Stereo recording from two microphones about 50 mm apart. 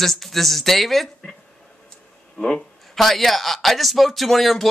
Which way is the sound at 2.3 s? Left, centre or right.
Centre.